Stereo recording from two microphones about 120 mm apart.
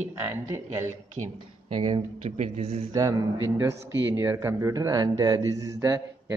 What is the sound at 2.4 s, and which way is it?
Speech, 60° right (ahead or behind).